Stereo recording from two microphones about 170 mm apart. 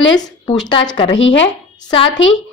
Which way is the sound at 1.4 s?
30° left (ahead or behind).